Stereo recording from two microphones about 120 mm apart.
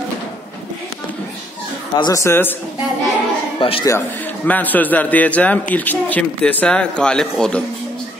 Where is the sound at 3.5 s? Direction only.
50° left (ahead or behind).